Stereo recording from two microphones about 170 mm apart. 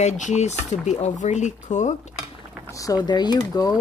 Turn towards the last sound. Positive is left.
turn(degrees=25)  # may be behind; listen again after turning